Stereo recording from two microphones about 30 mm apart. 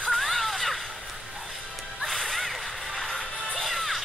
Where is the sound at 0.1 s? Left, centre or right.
Centre.